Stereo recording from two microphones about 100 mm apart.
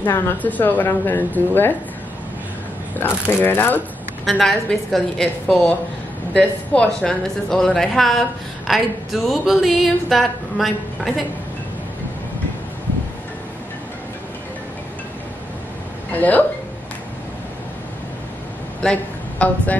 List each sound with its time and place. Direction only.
0.1 s speech: 15° left (ahead or behind)
3.0 s speech: 20° left (ahead or behind)
4.3 s a woman's voice: centre (ahead or behind)
16.1 s a woman's voice: 15° left (ahead or behind)
18.8 s speech: 10° left (ahead or behind)